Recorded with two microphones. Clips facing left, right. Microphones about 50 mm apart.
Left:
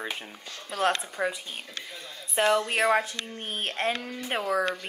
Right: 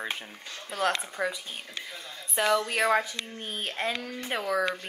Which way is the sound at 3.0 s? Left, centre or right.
Left.